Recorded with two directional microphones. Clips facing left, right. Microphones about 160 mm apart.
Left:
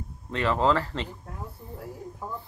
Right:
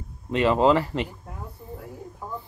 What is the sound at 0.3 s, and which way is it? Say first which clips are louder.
Speech: right 5 dB; 15° right (ahead or behind).